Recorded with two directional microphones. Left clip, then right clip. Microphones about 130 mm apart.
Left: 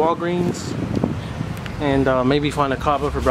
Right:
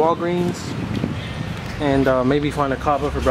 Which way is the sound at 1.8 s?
5° left (ahead or behind).